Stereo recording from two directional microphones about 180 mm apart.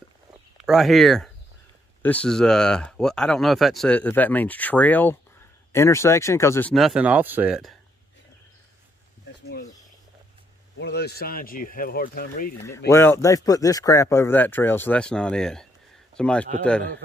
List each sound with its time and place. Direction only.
0.7 s speech: centre (ahead or behind)
6.7 s speech: centre (ahead or behind)
10.8 s speech: 65° left (ahead or behind)
12.6 s speech: 15° left (ahead or behind)